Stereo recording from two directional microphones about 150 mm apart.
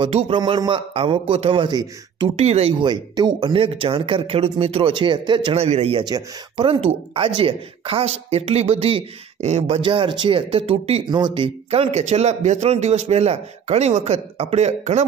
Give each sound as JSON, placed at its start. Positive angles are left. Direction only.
{"t": 0.0, "sound": "speech", "side_deg": -35}
{"t": 2.3, "sound": "speech", "side_deg": -45}
{"t": 2.8, "sound": "speech", "side_deg": -30}
{"t": 9.8, "sound": "speech", "side_deg": -35}
{"t": 11.1, "sound": "speech", "side_deg": -30}